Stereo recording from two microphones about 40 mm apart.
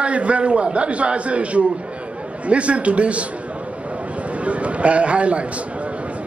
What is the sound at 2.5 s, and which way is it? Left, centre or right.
Speech, right.